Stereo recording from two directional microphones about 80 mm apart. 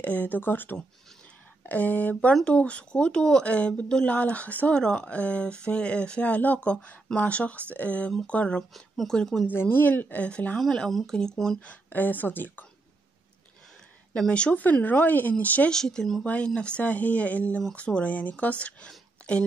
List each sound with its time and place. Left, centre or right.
0.0 s speech: left
9.5 s speech: left
10.6 s speech: centre
11.6 s speech: centre
14.1 s speech: centre
15.7 s speech: centre